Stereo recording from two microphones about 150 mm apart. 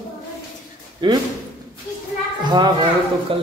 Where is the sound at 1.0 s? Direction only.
30° right (ahead or behind).